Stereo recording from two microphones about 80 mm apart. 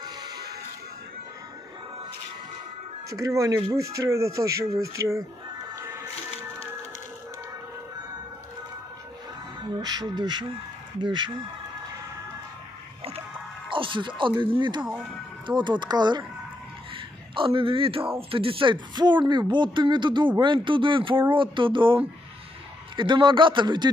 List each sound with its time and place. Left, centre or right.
3.1 s speech: right
5.8 s music: right
9.7 s speech: right
13.7 s music: right
14.6 s speech: right
16.9 s speech: right